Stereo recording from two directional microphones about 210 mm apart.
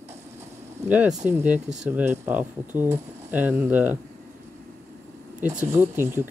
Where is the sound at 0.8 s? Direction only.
5° right (ahead or behind).